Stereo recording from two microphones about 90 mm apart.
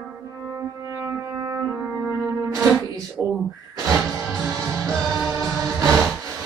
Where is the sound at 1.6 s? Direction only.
10° right (ahead or behind).